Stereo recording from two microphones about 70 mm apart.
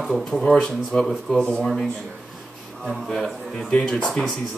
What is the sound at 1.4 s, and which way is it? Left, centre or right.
Speech, centre.